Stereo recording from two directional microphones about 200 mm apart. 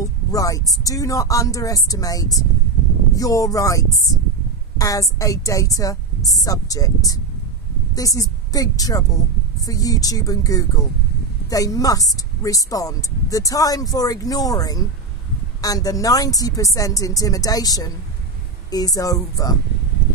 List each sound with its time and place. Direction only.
0.0 s a woman's voice: 15° left (ahead or behind)